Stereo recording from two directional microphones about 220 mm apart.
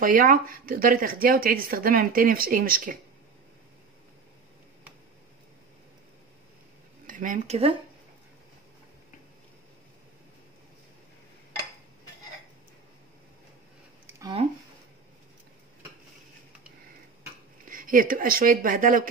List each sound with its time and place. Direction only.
0.0 s speech: 40° right (ahead or behind)
7.1 s cutlery: 35° right (ahead or behind)
17.6 s speech: 40° right (ahead or behind)